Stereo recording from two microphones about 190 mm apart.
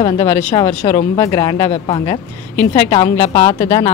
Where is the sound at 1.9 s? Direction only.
30° left (ahead or behind).